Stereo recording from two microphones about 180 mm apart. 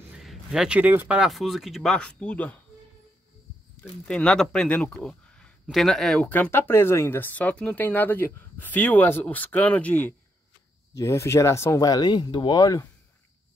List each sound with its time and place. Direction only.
0.2 s speech: centre (ahead or behind)
4.1 s speech: 5° left (ahead or behind); by 12.8 s 20° left (ahead or behind)